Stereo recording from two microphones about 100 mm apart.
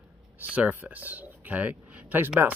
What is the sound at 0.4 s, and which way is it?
Speech, 20° right (ahead or behind).